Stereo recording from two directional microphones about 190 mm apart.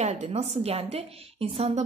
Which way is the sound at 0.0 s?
35° right (ahead or behind).